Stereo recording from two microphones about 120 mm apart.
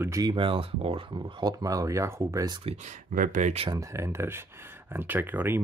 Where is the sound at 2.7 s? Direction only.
55° right (ahead or behind).